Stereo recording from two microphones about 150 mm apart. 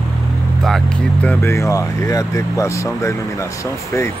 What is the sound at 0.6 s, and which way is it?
Vehicle, 5° left (ahead or behind).